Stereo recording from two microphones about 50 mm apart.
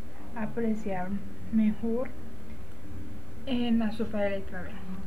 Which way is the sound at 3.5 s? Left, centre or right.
Centre.